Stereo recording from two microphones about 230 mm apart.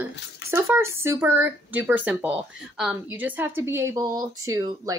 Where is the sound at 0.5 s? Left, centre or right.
Centre.